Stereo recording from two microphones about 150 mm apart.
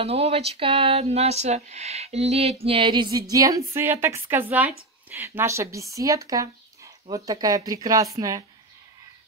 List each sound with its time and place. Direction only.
0.0 s music: 40° right (ahead or behind); by 4.7 s 10° right (ahead or behind)
5.1 s speech: 15° right (ahead or behind)